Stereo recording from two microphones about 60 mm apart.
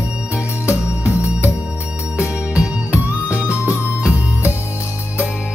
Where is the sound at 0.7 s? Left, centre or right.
Right.